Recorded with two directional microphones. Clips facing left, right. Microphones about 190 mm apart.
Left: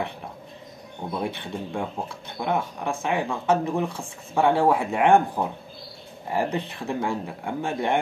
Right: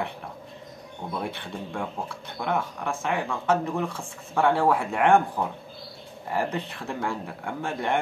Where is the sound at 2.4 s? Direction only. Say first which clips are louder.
Left 2 dB; 20° left (ahead or behind).